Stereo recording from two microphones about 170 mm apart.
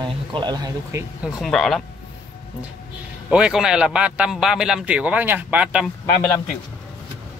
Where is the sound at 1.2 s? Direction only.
Centre (ahead or behind).